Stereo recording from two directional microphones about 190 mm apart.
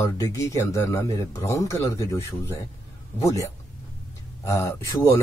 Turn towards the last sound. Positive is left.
turn(degrees=15)  # may be behind; listen again after turning